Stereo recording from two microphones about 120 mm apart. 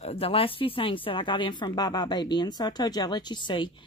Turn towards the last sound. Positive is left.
turn(degrees=40)  # may be behind; listen again after turning